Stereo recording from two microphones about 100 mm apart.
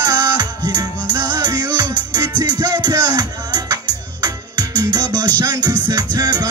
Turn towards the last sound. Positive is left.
turn(degrees=-40)  # may be behind; listen again after turning